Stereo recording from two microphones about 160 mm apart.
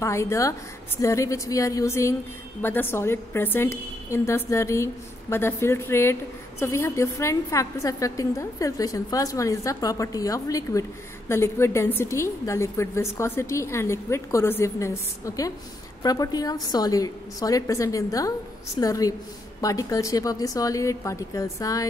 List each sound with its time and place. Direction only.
0.0 s a woman's voice: 20° left (ahead or behind)